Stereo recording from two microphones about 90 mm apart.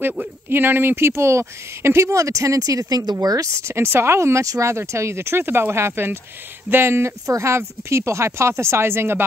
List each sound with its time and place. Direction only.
0.0 s speech: 25° right (ahead or behind)